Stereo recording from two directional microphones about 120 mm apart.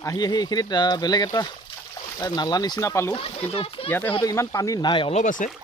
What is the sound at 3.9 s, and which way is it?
Speech, 15° left (ahead or behind).